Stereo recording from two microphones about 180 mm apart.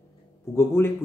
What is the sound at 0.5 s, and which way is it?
Speech, 15° left (ahead or behind).